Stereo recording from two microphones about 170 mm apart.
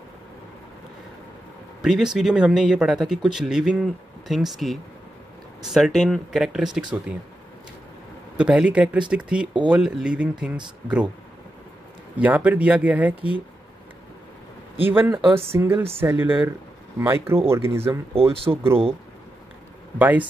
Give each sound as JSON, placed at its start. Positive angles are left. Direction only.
{"t": 1.8, "sound": "speech", "side_deg": -5}
{"t": 8.4, "sound": "speech", "side_deg": -5}
{"t": 12.2, "sound": "speech", "side_deg": -10}
{"t": 14.9, "sound": "speech", "side_deg": -10}
{"t": 18.3, "sound": "speech", "side_deg": -35}
{"t": 20.0, "sound": "speech", "side_deg": -10}